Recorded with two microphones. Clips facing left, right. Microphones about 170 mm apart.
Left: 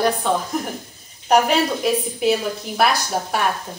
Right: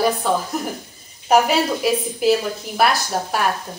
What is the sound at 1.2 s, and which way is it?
A woman's voice, 5° right (ahead or behind).